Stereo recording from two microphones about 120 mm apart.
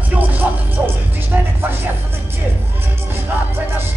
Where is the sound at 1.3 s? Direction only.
15° right (ahead or behind).